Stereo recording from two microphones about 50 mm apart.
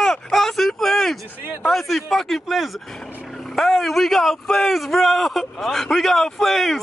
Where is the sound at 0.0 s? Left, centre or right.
Centre.